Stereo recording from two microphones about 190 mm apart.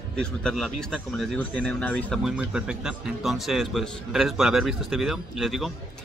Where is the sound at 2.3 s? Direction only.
5° right (ahead or behind).